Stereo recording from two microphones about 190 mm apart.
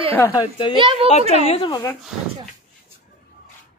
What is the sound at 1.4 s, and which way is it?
Speech, 30° left (ahead or behind).